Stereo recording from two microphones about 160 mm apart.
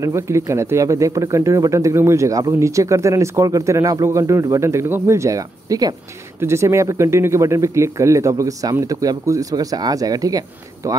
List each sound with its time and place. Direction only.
0.0 s speech: 20° right (ahead or behind)